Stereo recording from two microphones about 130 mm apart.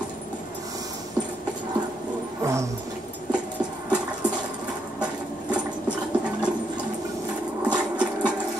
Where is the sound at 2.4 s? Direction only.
20° right (ahead or behind).